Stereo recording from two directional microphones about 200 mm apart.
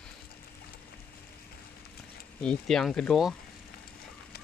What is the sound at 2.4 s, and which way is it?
Speech, 5° left (ahead or behind).